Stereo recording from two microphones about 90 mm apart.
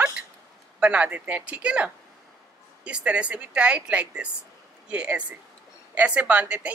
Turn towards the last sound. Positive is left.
turn(degrees=-15)  # may be behind; listen again after turning